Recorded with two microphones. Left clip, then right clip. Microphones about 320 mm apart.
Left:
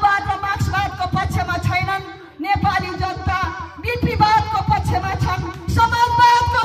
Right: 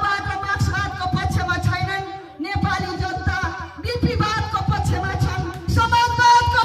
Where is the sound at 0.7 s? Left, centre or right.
Centre.